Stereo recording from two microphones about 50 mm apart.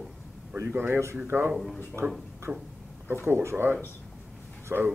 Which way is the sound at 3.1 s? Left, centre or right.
Right.